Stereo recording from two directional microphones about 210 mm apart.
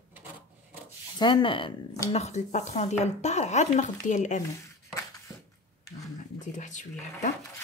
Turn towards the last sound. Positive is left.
turn(degrees=35)  # may be behind; listen again after turning